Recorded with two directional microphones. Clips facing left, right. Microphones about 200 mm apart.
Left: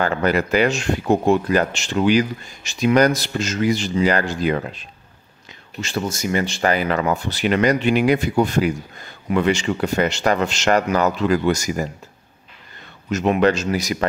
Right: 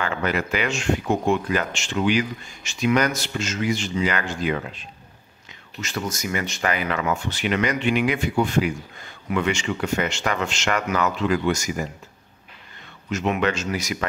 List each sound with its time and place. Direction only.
0.0 s speech: 40° left (ahead or behind)
13.1 s speech: 40° left (ahead or behind)